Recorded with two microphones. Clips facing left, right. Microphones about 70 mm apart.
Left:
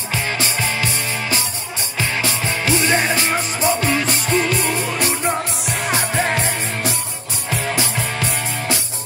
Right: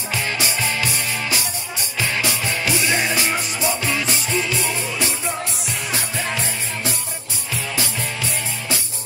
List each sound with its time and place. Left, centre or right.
0.1 s music: left
2.0 s music: left